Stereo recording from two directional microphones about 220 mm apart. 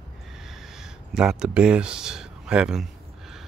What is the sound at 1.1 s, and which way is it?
Speech, 5° right (ahead or behind).